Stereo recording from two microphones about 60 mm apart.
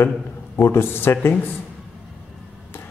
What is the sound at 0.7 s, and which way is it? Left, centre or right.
Speech, left.